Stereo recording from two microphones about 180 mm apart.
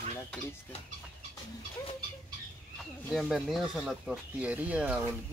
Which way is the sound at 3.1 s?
Centre (ahead or behind).